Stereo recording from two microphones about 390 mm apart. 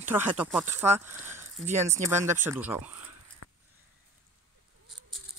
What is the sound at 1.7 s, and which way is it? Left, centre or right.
Speech, centre.